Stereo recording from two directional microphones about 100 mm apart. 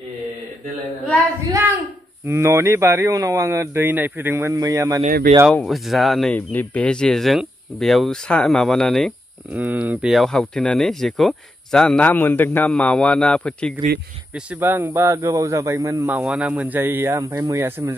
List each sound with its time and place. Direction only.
2.2 s a man's voice: 30° right (ahead or behind)
4.6 s speech: 35° right (ahead or behind)
5.5 s speech: 5° left (ahead or behind)
6.3 s speech: 15° left (ahead or behind)
9.5 s a man's voice: 20° right (ahead or behind)
10.0 s speech: centre (ahead or behind)
14.3 s a man's voice: 15° right (ahead or behind)
16.1 s a man's voice: 15° right (ahead or behind)